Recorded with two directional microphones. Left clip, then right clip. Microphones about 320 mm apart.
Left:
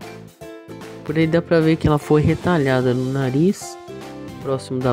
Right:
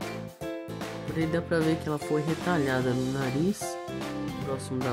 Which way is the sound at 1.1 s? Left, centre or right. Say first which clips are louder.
Left 11 dB; centre.